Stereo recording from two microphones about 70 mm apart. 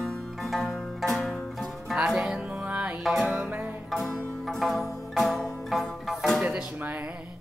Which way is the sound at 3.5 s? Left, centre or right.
Right.